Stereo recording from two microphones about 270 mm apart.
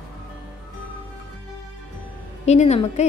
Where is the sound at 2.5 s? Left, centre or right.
Left.